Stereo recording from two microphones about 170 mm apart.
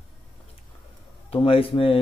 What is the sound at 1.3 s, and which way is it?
Speech, 35° left (ahead or behind).